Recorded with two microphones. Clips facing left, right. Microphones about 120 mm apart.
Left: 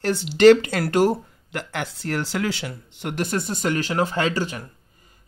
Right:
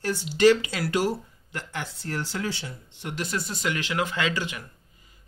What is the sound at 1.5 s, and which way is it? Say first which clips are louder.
Speech: left 5 dB; 75° left (ahead or behind).